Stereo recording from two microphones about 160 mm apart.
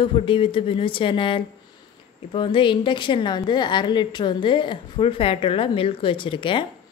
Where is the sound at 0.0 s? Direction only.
35° left (ahead or behind).